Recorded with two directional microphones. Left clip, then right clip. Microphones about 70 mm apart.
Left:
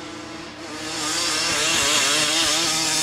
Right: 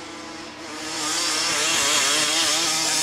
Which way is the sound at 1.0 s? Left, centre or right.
Centre.